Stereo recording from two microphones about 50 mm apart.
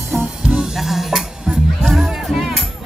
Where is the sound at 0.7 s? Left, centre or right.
Centre.